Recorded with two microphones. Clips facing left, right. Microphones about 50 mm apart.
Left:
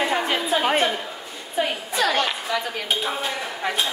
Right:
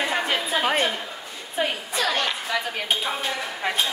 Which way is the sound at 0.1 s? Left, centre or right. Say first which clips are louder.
Left 2 dB; centre.